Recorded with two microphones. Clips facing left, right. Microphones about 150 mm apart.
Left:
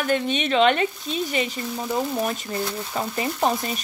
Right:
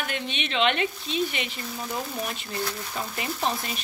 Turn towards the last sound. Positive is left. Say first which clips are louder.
# left 6 dB
turn(degrees=40)  # may be behind; listen again after turning